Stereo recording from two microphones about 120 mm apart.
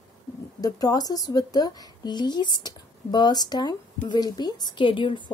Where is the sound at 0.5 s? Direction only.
30° left (ahead or behind).